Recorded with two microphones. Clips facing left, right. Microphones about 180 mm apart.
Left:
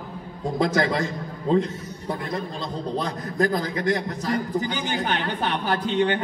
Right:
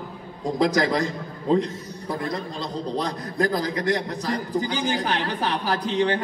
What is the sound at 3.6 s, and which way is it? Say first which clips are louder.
A man's voice: even; 35° right (ahead or behind).